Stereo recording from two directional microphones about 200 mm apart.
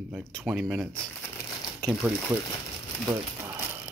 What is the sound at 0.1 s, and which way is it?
Speech, centre (ahead or behind).